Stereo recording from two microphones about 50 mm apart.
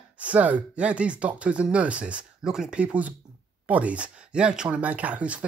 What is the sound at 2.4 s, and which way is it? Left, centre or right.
Speech, centre.